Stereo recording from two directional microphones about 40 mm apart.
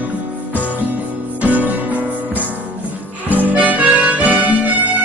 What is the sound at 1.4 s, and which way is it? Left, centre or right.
Music, right.